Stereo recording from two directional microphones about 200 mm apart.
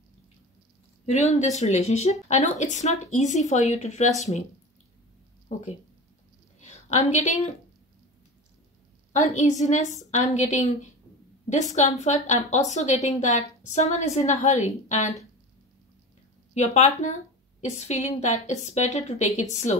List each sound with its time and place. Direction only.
1.0 s speech: 35° left (ahead or behind)
6.6 s a woman's voice: 35° left (ahead or behind)
9.2 s speech: 35° left (ahead or behind)
16.5 s speech: 35° left (ahead or behind)